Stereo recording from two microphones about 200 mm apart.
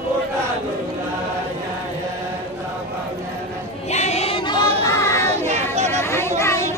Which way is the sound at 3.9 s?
35° left (ahead or behind).